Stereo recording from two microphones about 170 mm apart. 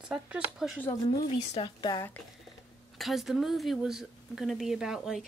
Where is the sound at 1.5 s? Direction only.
30° left (ahead or behind).